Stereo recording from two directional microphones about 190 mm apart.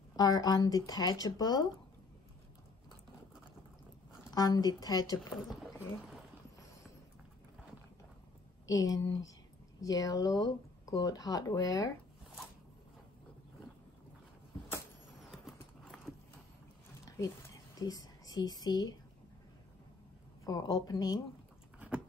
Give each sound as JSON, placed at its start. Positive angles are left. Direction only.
{"t": 0.1, "sound": "speech", "side_deg": 20}
{"t": 4.3, "sound": "speech", "side_deg": 20}
{"t": 5.5, "sound": "a sound", "side_deg": 0}
{"t": 8.6, "sound": "speech", "side_deg": 20}
{"t": 15.8, "sound": "clip-clop", "side_deg": 0}
{"t": 17.7, "sound": "a woman's voice", "side_deg": 20}
{"t": 20.4, "sound": "speech", "side_deg": 20}
{"t": 21.7, "sound": "biting", "side_deg": -5}